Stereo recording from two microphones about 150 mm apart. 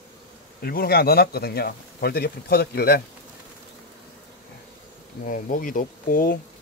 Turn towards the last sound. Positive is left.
turn(degrees=70)  # may be behind; listen again after turning